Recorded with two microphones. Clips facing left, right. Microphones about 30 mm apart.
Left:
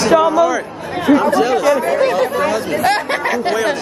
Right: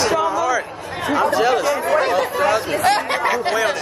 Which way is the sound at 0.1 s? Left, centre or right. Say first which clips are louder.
Left 7 dB; left.